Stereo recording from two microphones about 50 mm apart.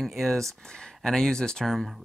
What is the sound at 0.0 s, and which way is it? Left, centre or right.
Speech, centre.